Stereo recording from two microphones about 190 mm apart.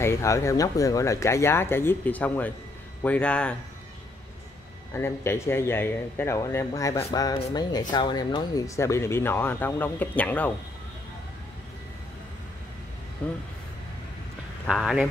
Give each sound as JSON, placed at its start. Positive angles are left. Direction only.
{"t": 0.0, "sound": "speech", "side_deg": 15}
{"t": 4.9, "sound": "speech", "side_deg": 10}
{"t": 14.7, "sound": "speech", "side_deg": 0}